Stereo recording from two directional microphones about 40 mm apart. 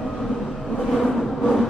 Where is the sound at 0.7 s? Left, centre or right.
Centre.